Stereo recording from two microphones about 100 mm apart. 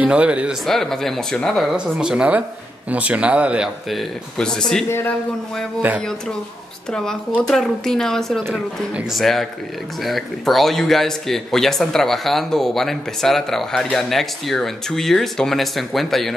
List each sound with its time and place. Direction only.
0.0 s speech: 10° right (ahead or behind)
0.7 s speech: 5° left (ahead or behind)
4.4 s speech: 5° left (ahead or behind)
4.8 s a man's voice: 25° left (ahead or behind)
5.8 s speech: 15° right (ahead or behind)
6.9 s speech: 5° left (ahead or behind)